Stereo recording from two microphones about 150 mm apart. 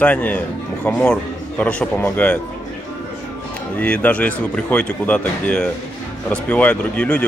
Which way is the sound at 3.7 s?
10° left (ahead or behind).